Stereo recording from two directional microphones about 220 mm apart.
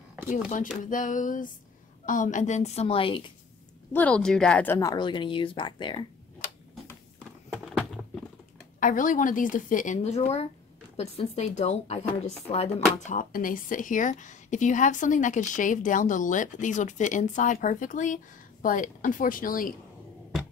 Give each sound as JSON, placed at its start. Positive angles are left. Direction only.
{"t": 0.8, "sound": "a woman's voice", "side_deg": 35}
{"t": 3.9, "sound": "a woman's voice", "side_deg": 5}
{"t": 7.4, "sound": "a sound", "side_deg": -5}
{"t": 8.7, "sound": "a woman's voice", "side_deg": 35}